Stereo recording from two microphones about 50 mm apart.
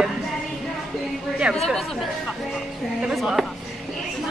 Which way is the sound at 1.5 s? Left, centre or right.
Right.